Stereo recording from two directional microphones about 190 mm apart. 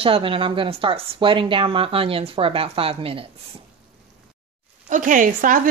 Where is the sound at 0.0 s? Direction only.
30° right (ahead or behind).